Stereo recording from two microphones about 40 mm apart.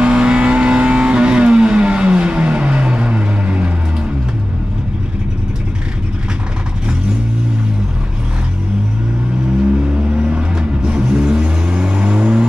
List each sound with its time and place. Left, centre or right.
0.0 s vehicle: right
9.8 s vehicle: right